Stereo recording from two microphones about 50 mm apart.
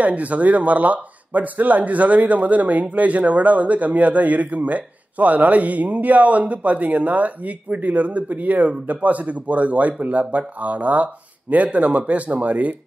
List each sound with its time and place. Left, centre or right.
0.0 s speech: right